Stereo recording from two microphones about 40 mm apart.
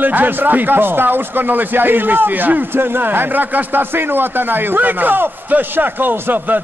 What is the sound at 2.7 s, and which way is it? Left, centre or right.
Speech, right.